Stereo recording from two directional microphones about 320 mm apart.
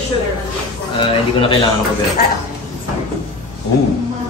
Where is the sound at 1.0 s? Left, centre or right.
Centre.